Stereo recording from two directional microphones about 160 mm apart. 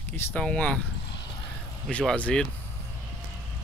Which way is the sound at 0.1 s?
10° left (ahead or behind).